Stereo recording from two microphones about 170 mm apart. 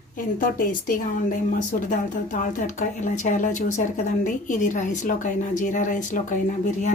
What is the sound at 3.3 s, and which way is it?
A woman's voice, 50° left (ahead or behind).